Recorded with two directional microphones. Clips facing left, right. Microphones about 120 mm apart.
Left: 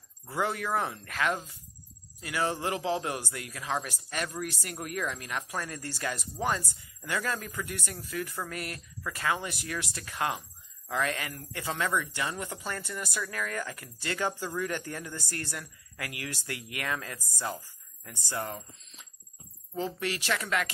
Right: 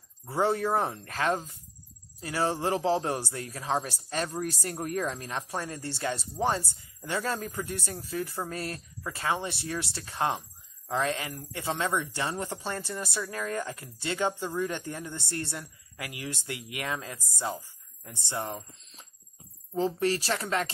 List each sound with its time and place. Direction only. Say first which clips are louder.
0.3 s speech: right 4 dB; 30° right (ahead or behind)
20.0 s speech: right 4 dB; 35° right (ahead or behind)